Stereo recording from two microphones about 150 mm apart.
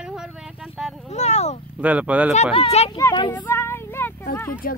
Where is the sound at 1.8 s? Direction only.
10° right (ahead or behind).